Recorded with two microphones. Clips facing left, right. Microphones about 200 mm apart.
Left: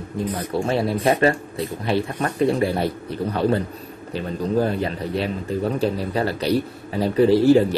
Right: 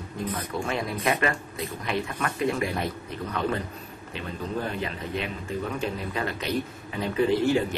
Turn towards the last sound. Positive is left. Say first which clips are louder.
# left 8 dB
turn(degrees=35)  # may be behind; listen again after turning